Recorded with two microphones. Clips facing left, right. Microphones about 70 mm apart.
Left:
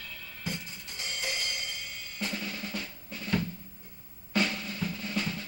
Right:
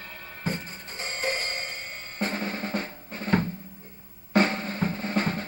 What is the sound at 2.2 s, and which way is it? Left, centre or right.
Drum, right.